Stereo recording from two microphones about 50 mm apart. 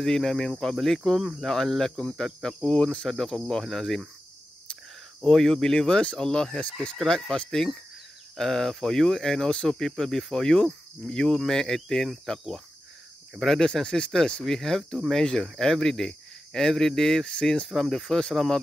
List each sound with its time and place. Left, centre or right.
0.0 s speech: centre
5.2 s speech: centre
17.3 s speech: centre
17.6 s speech: centre